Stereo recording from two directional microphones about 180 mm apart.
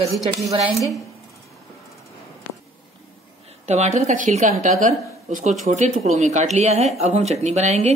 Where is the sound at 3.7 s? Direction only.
40° right (ahead or behind).